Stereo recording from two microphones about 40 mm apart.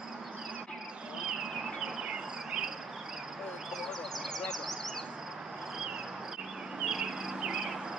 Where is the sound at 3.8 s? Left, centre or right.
Centre.